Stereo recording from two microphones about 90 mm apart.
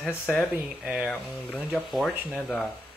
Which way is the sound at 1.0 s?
15° left (ahead or behind).